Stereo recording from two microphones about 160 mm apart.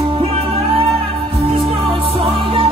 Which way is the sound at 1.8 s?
35° right (ahead or behind).